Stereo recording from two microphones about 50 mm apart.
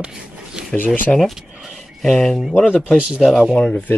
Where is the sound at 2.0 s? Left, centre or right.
Centre.